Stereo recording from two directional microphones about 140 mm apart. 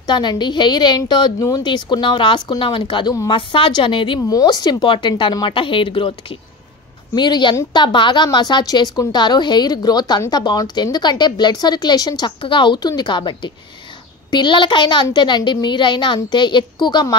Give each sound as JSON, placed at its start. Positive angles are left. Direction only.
{"t": 0.0, "sound": "a woman's voice", "side_deg": 30}
{"t": 7.2, "sound": "a woman's voice", "side_deg": 30}